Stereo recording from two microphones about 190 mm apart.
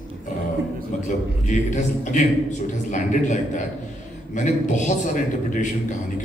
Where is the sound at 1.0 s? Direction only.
40° left (ahead or behind).